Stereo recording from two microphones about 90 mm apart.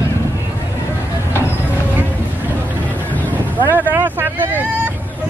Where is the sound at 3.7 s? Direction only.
20° right (ahead or behind).